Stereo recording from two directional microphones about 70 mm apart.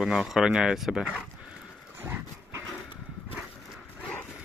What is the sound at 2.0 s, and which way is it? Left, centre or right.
Dog, right.